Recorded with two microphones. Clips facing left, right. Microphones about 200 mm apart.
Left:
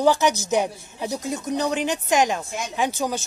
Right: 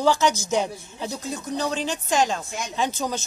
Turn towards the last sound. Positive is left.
turn(degrees=15)  # may be behind; listen again after turning